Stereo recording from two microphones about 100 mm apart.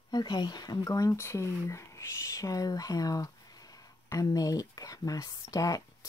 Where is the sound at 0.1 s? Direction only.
45° left (ahead or behind).